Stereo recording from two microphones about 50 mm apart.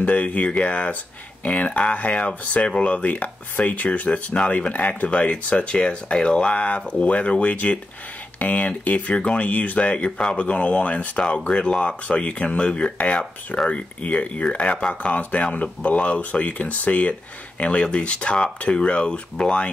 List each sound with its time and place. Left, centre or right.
0.0 s speech: left